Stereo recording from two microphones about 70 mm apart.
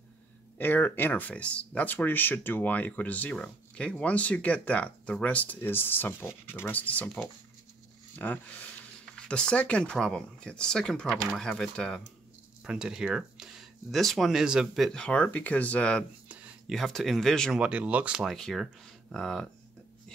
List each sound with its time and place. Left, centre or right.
0.6 s speech: left
8.2 s speech: left
12.6 s speech: centre
14.4 s speech: centre
14.8 s speech: centre
16.6 s speech: centre
17.6 s speech: centre
18.2 s speech: centre